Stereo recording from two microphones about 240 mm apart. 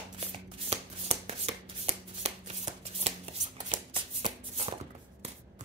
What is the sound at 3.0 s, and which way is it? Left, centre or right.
Shuffling cards, right.